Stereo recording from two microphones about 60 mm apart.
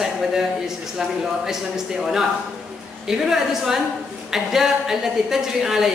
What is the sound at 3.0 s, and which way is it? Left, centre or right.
A woman's voice, centre.